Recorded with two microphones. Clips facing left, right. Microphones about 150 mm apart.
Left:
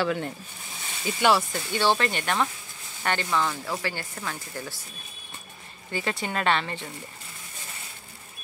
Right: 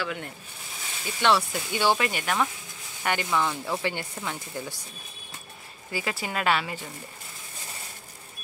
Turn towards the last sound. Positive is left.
turn(degrees=-5)  # may be behind; listen again after turning